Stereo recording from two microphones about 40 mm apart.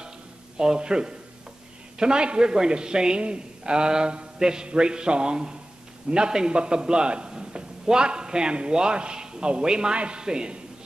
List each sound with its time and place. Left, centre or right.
0.6 s a man's voice: centre